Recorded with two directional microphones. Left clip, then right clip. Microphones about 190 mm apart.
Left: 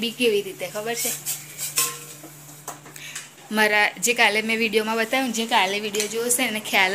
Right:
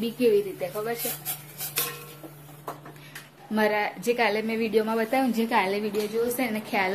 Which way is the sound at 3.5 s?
5° left (ahead or behind).